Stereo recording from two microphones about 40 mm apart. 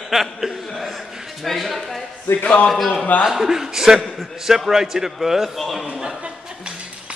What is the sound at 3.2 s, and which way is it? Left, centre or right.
A man's voice, centre.